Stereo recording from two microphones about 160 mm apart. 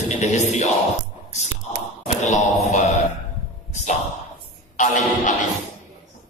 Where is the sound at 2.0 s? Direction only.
45° left (ahead or behind).